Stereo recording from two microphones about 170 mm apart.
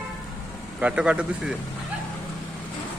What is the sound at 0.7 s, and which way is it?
Speech, 5° right (ahead or behind).